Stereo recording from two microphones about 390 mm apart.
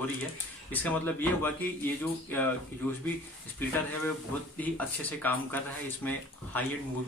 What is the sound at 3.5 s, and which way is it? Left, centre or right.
Speech, centre.